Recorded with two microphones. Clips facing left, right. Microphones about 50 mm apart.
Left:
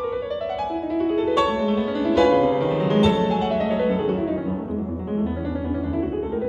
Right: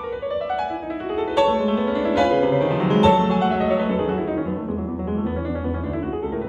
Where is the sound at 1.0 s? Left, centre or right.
Centre.